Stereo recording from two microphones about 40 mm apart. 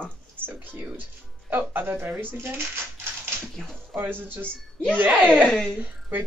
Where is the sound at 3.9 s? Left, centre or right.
Right.